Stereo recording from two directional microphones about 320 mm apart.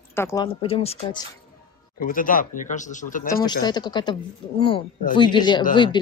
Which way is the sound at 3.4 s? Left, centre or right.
Centre.